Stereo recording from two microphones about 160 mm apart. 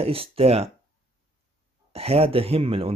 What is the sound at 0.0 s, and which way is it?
Speech, 35° right (ahead or behind).